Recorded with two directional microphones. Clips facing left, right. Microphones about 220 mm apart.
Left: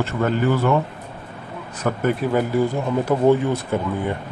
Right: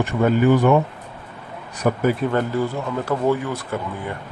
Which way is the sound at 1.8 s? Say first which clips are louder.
Right 3 dB; 10° right (ahead or behind).